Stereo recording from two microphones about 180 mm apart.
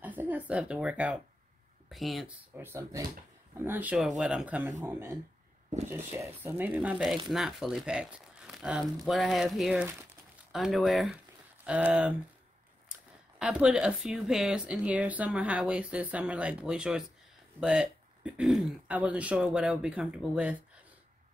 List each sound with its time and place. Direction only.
0.0 s a woman's voice: 10° right (ahead or behind)
13.4 s speech: 5° right (ahead or behind)